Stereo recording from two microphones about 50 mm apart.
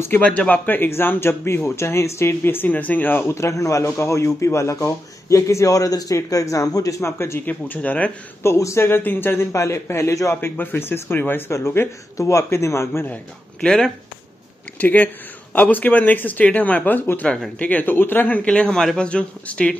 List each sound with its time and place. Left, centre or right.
0.2 s speech: left
0.7 s speech: left
3.3 s a man's voice: left
7.4 s speech: left
8.4 s a man's voice: left
8.8 s a man's voice: left
10.3 s speech: left
11.5 s a man's voice: left
12.2 s a man's voice: left
13.6 s speech: centre
14.8 s speech: left
17.6 s speech: left
17.9 s speech: left
18.5 s speech: centre